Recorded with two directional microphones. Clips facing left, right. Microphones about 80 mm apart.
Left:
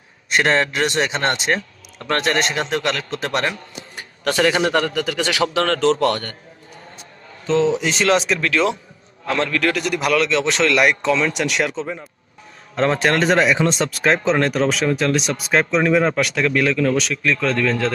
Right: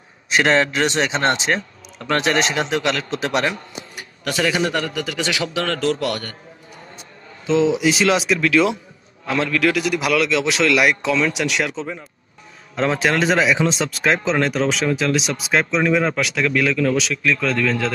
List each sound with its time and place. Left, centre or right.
0.3 s speech: centre
4.3 s a man's voice: left
4.8 s a man's voice: right
7.4 s speech: centre